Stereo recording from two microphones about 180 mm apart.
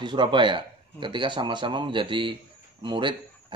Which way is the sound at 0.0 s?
25° right (ahead or behind).